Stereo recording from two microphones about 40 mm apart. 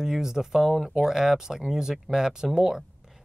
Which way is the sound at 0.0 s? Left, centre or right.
Centre.